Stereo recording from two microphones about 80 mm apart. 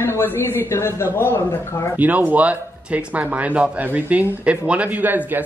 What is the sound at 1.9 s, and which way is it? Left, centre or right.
Speech, centre.